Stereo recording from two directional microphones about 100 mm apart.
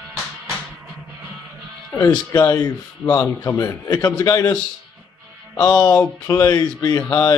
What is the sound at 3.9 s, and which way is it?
Speech, 40° left (ahead or behind).